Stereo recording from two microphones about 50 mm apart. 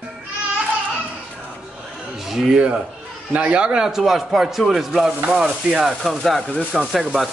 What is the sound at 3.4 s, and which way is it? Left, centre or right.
A woman's voice, right.